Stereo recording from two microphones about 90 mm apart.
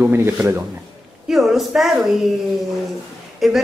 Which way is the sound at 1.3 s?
Centre (ahead or behind).